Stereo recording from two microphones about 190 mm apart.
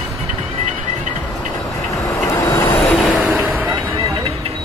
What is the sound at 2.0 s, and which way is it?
Vehicle, 15° left (ahead or behind).